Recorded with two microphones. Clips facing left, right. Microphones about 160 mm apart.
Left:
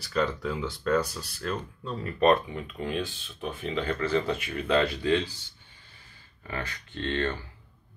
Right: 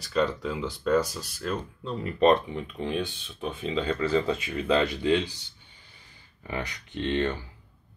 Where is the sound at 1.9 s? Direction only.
20° right (ahead or behind).